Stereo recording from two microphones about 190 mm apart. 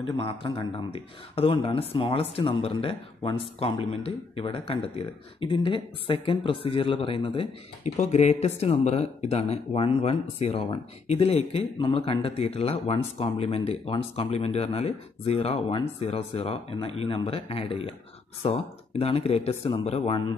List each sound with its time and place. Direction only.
0.1 s speech: 25° left (ahead or behind)
18.9 s speech: 30° left (ahead or behind)